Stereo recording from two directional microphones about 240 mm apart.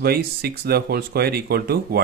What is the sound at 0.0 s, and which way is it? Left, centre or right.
Speech, right.